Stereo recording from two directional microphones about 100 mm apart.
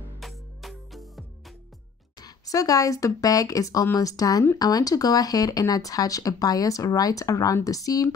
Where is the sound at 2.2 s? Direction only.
35° left (ahead or behind).